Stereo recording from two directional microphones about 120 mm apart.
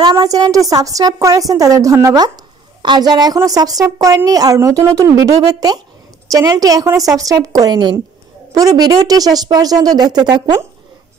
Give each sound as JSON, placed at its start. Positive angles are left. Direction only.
{"t": 0.0, "sound": "speech", "side_deg": -35}